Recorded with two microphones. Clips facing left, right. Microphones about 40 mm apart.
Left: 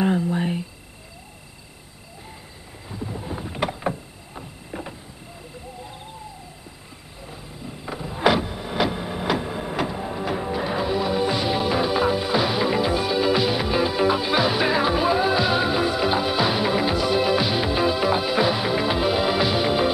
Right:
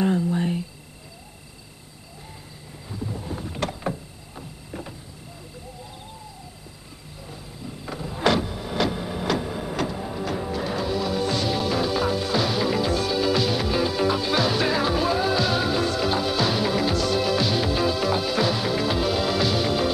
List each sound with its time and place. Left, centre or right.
0.0 s a sound: centre
2.9 s boat: centre
7.2 s vehicle: centre